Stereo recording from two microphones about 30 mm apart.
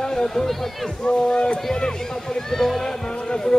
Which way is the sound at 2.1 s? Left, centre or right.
Centre.